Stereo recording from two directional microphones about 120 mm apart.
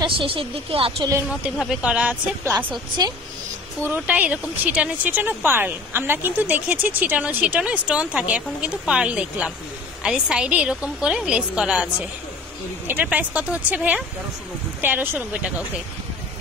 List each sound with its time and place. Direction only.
0.0 s speech: 50° right (ahead or behind)
1.6 s speech: 5° right (ahead or behind)
3.8 s speech: 15° right (ahead or behind)